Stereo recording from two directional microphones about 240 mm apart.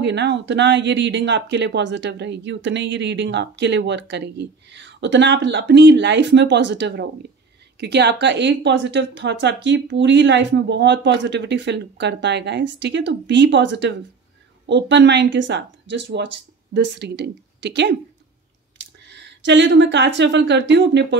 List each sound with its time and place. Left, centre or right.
0.0 s speech: right